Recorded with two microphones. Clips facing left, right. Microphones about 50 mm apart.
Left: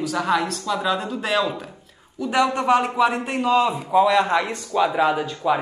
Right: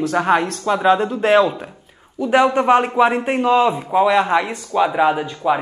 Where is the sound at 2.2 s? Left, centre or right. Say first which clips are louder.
Right 5 dB; right.